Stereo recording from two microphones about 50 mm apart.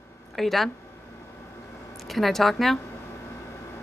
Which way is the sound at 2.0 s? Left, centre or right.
Centre.